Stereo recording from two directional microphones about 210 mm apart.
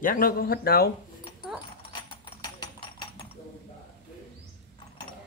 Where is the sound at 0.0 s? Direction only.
45° left (ahead or behind).